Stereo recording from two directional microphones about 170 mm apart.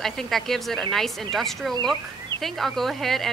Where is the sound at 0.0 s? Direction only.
Centre (ahead or behind).